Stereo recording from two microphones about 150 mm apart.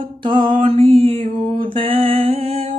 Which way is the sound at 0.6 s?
45° right (ahead or behind).